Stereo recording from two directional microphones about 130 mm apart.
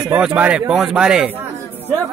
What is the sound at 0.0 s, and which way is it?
Speech, 5° right (ahead or behind).